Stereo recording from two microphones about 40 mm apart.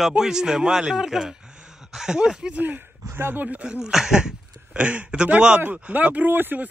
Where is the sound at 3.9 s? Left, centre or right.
Centre.